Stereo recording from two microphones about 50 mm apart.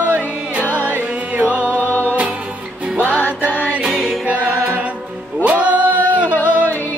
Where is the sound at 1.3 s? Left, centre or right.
Right.